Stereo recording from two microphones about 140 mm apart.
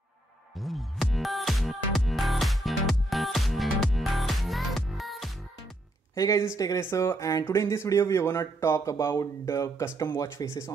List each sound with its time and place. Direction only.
0.6 s music: centre (ahead or behind)
6.1 s speech: 25° left (ahead or behind)